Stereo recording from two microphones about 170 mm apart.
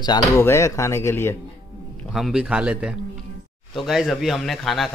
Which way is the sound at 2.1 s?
Centre (ahead or behind).